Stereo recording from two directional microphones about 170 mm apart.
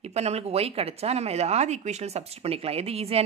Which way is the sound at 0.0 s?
40° right (ahead or behind).